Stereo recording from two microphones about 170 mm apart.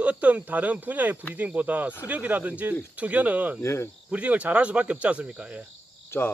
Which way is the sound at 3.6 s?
15° left (ahead or behind).